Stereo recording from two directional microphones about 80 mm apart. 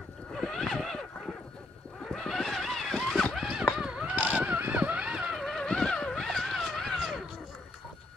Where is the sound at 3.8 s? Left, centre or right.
Centre.